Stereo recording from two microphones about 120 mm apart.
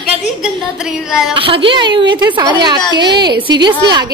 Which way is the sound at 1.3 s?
50° right (ahead or behind).